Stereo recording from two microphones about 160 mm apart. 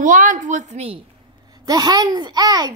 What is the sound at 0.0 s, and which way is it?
A woman's voice, 55° right (ahead or behind).